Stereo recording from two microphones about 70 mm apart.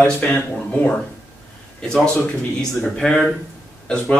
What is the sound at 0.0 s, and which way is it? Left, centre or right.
Speech, left.